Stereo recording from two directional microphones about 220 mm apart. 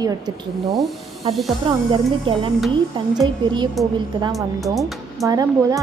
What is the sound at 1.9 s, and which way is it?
Speech, 25° right (ahead or behind).